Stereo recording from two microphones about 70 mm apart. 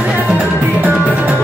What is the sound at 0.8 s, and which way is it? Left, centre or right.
Music, right.